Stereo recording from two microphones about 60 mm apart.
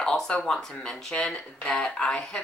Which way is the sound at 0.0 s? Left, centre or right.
Centre.